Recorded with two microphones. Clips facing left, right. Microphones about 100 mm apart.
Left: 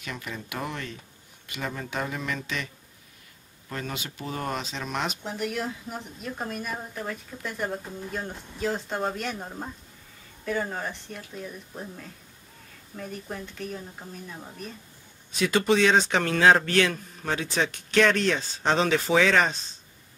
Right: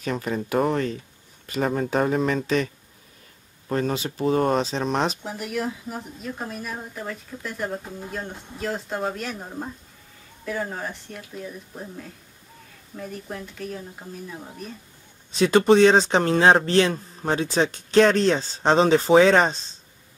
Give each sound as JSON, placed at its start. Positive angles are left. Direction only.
{"t": 0.0, "sound": "speech", "side_deg": -40}
{"t": 5.2, "sound": "speech", "side_deg": -5}
{"t": 15.3, "sound": "speech", "side_deg": -35}